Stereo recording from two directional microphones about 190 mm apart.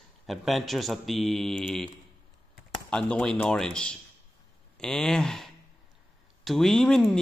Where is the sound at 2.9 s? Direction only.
5° left (ahead or behind).